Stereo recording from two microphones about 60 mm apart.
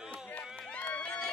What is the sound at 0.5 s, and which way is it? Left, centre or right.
Run, left.